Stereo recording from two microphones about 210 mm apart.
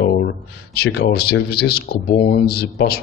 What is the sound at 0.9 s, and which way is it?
A man's voice, 50° left (ahead or behind).